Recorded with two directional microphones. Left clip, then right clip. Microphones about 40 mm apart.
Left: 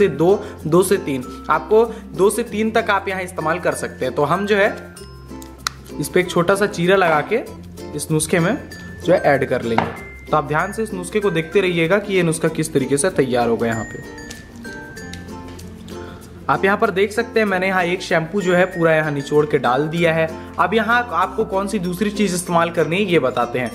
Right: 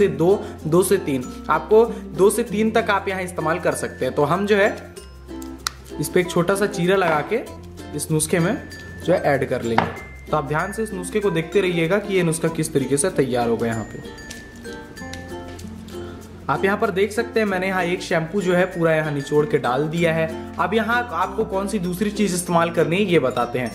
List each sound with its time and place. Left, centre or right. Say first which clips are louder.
0.0 s a man's voice: left 2 dB; left
16.4 s a man's voice: left 4 dB; left
23.4 s speech: left 3 dB; left